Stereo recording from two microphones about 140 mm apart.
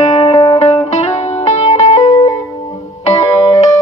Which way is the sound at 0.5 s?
55° left (ahead or behind).